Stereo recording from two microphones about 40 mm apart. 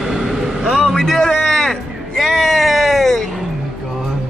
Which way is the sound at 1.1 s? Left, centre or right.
Centre.